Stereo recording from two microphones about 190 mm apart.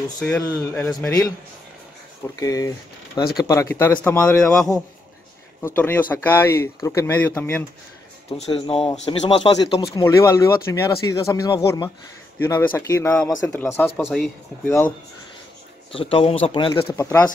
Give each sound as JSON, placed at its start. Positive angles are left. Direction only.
{"t": 0.2, "sound": "speech", "side_deg": 10}
{"t": 2.4, "sound": "speech", "side_deg": 20}
{"t": 8.3, "sound": "a man's voice", "side_deg": 35}
{"t": 9.9, "sound": "speech", "side_deg": 15}
{"t": 14.0, "sound": "speech", "side_deg": 0}
{"t": 14.7, "sound": "speech", "side_deg": 15}
{"t": 15.9, "sound": "speech", "side_deg": 30}
{"t": 16.9, "sound": "speech", "side_deg": 15}